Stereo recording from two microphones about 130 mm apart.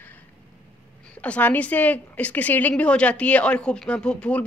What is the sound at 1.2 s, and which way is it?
Speech, 10° left (ahead or behind).